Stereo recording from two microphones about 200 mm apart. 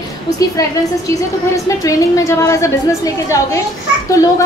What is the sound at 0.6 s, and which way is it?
Speech, 15° left (ahead or behind).